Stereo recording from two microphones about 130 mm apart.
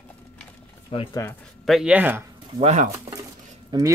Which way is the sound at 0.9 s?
45° left (ahead or behind).